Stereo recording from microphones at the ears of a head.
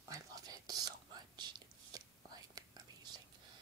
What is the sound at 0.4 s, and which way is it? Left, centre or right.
Whispering, right.